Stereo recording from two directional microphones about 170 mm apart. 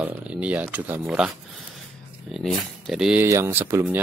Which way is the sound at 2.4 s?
5° right (ahead or behind).